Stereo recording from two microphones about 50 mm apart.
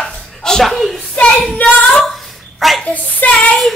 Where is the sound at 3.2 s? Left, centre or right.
Left.